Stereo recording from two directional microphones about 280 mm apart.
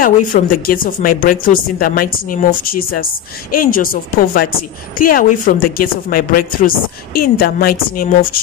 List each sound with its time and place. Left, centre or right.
0.0 s speech: left